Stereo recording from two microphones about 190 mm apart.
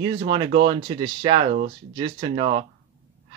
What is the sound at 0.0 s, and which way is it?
Speech, 25° right (ahead or behind).